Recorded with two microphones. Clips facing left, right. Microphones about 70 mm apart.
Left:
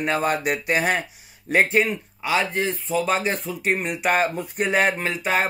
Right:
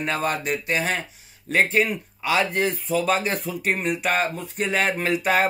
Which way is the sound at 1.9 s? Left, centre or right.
Centre.